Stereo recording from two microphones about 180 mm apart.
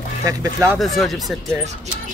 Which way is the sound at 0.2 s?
20° right (ahead or behind).